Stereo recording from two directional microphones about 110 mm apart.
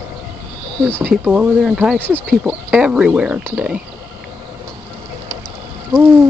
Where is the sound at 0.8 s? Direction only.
20° right (ahead or behind).